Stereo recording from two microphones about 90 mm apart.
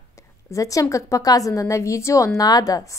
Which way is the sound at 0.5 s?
40° left (ahead or behind).